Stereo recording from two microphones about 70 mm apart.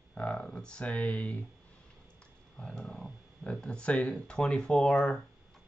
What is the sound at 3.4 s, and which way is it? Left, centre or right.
Speech, centre.